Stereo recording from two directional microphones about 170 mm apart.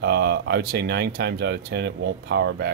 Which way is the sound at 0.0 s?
90° right.